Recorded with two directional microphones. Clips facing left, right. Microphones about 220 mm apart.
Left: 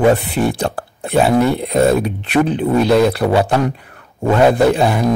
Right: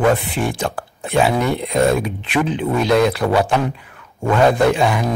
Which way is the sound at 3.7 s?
40° left (ahead or behind).